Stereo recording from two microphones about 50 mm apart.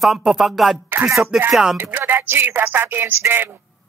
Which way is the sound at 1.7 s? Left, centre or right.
Right.